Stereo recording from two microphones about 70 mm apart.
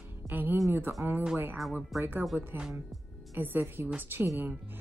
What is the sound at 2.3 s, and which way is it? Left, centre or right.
A woman's voice, right.